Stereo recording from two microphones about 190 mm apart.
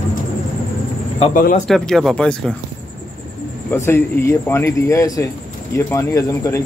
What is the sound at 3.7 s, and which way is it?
Speech, 15° left (ahead or behind).